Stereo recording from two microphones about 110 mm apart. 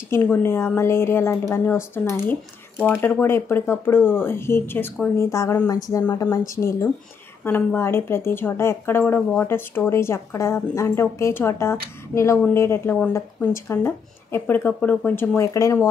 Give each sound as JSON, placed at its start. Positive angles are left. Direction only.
{"t": 0.1, "sound": "speech", "side_deg": 20}